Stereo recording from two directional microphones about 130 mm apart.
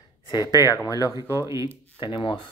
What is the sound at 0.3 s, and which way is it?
Speech, 30° left (ahead or behind).